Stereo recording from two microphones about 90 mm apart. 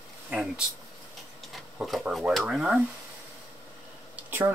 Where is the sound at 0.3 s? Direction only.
10° right (ahead or behind).